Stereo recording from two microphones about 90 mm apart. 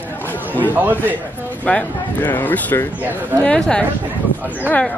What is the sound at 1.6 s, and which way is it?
Speech, 15° left (ahead or behind).